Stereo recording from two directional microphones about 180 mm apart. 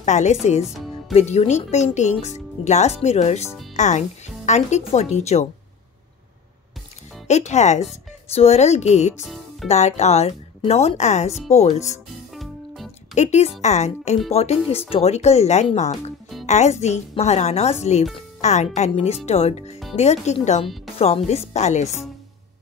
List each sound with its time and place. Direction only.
0.0 s speech: 40° left (ahead or behind)
7.2 s speech: 40° left (ahead or behind)
9.2 s music: centre (ahead or behind)
9.7 s speech: 35° left (ahead or behind)
12.4 s music: centre (ahead or behind)
13.1 s speech: 40° left (ahead or behind)
20.6 s speech: centre (ahead or behind)
21.0 s speech: 35° left (ahead or behind)